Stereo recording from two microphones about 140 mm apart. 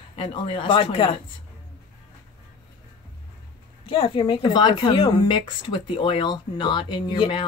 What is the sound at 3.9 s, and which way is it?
Speech, 40° left (ahead or behind).